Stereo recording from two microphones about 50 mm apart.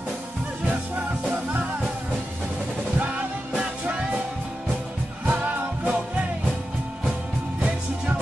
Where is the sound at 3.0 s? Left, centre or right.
Right.